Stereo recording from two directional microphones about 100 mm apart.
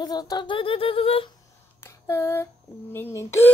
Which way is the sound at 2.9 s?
25° left (ahead or behind).